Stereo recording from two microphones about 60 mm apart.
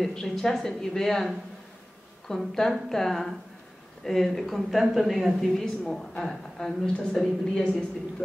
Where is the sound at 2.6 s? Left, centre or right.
Centre.